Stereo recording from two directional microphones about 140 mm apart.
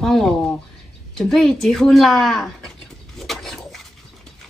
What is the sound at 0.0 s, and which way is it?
Bird, centre (ahead or behind).